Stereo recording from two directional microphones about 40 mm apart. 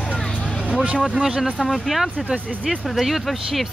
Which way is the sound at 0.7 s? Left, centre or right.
Right.